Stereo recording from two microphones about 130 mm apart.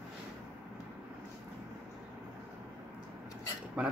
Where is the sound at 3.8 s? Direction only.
10° right (ahead or behind).